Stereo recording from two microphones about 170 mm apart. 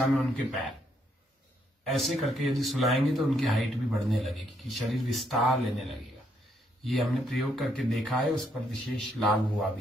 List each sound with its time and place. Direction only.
0.0 s speech: centre (ahead or behind)
1.9 s speech: centre (ahead or behind)